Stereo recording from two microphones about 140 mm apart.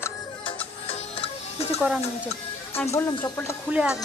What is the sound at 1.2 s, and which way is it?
Music, 45° left (ahead or behind).